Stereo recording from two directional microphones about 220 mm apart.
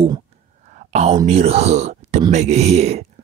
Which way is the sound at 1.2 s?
30° right (ahead or behind).